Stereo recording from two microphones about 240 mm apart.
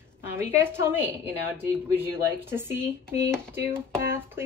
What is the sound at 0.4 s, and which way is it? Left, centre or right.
Speech, centre.